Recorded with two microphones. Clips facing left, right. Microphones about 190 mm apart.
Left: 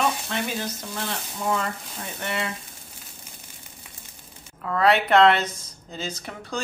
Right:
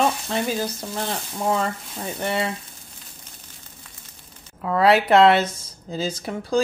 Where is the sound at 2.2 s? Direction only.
30° right (ahead or behind).